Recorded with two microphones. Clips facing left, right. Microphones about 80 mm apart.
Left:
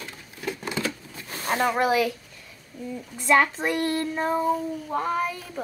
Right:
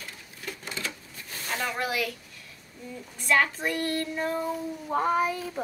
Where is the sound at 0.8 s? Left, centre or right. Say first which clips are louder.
Left 6 dB; left.